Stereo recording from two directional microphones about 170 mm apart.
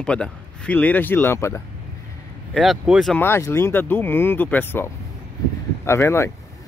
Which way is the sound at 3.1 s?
15° left (ahead or behind).